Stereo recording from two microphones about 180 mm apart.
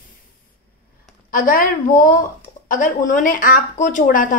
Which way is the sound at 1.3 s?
50° left (ahead or behind).